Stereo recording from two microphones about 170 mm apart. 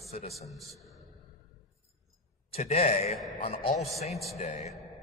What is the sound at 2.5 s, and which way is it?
A man's voice, 35° left (ahead or behind).